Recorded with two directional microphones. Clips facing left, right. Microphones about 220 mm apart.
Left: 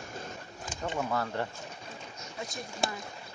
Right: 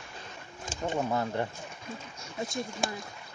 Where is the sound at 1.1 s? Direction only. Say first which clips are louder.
Right 2 dB; 20° right (ahead or behind).